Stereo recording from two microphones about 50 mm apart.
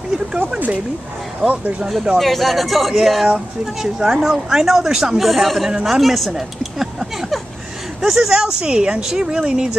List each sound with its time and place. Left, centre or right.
1.4 s speech: centre
2.1 s speech: centre